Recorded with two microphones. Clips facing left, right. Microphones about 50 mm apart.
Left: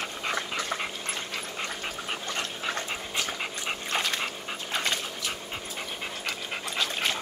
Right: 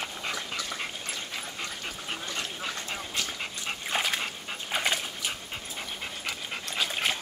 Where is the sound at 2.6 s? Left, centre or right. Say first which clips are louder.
Left 3 dB; left.